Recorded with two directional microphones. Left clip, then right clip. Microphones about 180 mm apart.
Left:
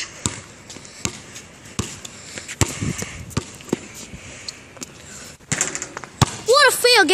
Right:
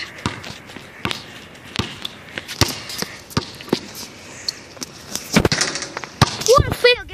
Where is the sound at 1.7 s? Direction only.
15° left (ahead or behind).